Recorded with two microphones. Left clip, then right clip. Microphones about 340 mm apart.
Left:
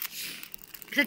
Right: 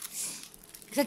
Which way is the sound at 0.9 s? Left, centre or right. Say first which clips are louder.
Left 3 dB; centre.